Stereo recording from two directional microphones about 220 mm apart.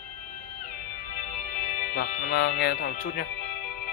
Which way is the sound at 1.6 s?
35° left (ahead or behind).